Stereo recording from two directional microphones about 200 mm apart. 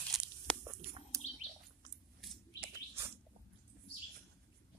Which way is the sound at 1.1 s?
15° right (ahead or behind).